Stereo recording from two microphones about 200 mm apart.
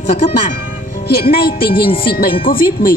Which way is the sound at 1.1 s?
50° left (ahead or behind).